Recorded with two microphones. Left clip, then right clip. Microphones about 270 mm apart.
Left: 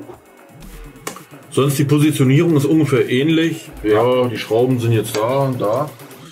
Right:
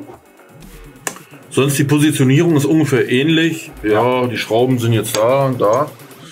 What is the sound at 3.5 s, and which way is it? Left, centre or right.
Speech, centre.